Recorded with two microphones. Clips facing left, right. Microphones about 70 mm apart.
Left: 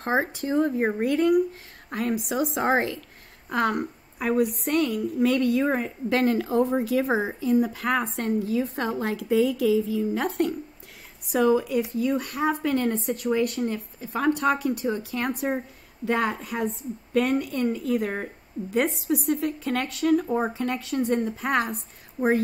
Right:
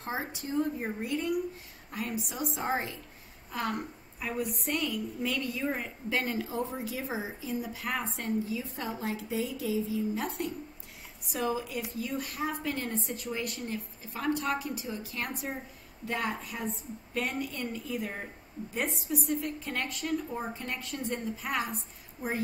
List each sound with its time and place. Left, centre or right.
0.0 s a woman's voice: left